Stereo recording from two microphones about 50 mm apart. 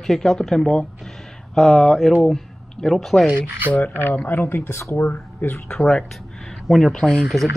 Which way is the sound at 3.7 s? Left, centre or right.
Left.